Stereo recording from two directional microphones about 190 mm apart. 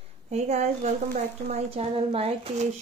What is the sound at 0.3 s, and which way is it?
Speech, 35° right (ahead or behind).